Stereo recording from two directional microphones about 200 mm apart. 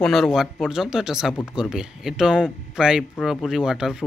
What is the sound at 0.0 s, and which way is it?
Speech, centre (ahead or behind).